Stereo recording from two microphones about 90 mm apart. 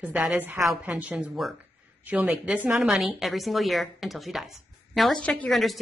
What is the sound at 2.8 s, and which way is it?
A woman's voice, 5° right (ahead or behind).